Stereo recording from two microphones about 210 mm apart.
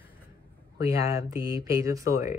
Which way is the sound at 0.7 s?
15° right (ahead or behind).